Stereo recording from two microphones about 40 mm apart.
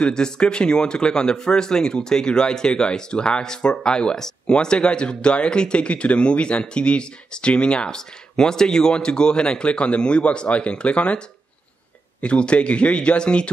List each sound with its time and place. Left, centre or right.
0.0 s speech: left